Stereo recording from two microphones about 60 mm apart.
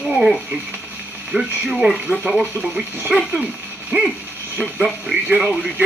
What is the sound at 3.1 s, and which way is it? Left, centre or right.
Speech, centre.